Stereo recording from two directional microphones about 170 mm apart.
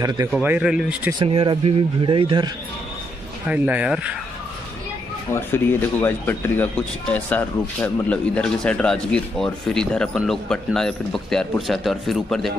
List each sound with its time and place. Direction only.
0.3 s speech: 10° right (ahead or behind)
1.2 s speech: 30° right (ahead or behind)
3.4 s speech: 10° right (ahead or behind)
5.3 s speech: 15° left (ahead or behind)